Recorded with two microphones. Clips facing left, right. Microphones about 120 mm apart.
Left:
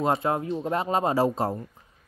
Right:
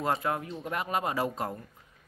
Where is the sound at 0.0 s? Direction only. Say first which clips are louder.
Left 5 dB; 25° left (ahead or behind).